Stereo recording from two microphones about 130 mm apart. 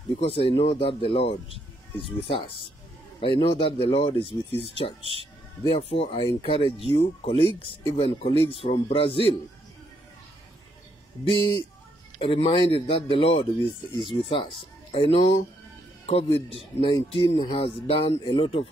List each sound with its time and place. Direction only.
0.2 s speech: 45° left (ahead or behind)
11.2 s speech: 40° left (ahead or behind)